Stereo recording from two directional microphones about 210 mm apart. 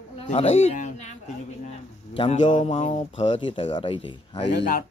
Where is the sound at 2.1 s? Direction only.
35° left (ahead or behind).